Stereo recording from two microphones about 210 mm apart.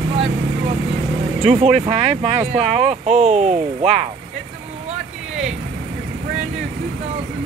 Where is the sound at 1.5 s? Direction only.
30° right (ahead or behind).